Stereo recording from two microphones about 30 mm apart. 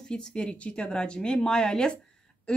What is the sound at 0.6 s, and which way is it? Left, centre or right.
Speech, left.